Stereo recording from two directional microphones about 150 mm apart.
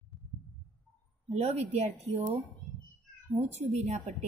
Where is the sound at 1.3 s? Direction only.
45° right (ahead or behind).